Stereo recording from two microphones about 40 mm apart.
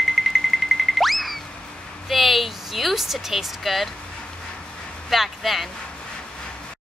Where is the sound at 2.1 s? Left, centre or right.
Centre.